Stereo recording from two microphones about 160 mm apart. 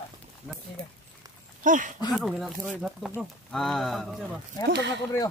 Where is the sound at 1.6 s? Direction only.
55° right (ahead or behind).